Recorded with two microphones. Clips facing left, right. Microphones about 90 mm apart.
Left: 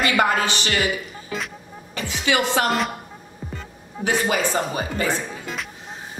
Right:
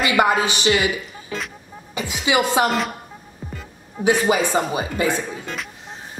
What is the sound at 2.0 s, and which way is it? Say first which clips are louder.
Speech: right 2 dB; 15° right (ahead or behind).